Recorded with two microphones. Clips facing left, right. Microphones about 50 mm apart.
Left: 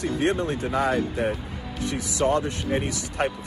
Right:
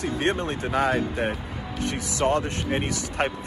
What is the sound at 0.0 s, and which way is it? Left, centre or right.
Speech, right.